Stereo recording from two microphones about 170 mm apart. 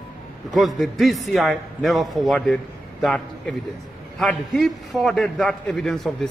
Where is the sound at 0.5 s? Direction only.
Centre (ahead or behind).